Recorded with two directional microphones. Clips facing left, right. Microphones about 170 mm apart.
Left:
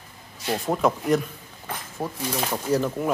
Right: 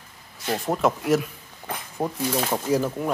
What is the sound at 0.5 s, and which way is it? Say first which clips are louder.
Speech: even; centre (ahead or behind).